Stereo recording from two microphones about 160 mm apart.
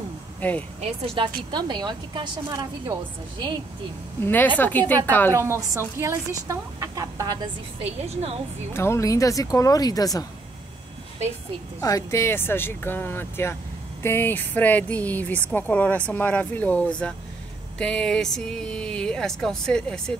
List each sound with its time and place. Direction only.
0.4 s speech: 10° left (ahead or behind)
0.7 s speech: 35° right (ahead or behind)
4.2 s speech: 10° left (ahead or behind)
5.3 s speech: 15° right (ahead or behind)
8.0 s a woman's voice: 40° right (ahead or behind)
8.7 s speech: 15° left (ahead or behind)
11.8 s speech: 20° left (ahead or behind)